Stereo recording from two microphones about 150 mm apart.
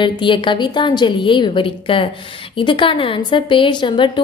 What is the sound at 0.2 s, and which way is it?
A woman's voice, 30° left (ahead or behind).